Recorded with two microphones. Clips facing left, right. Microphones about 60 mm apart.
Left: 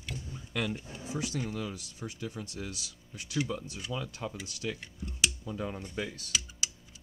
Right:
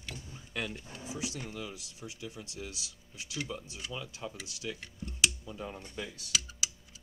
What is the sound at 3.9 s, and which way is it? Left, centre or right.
Speech, left.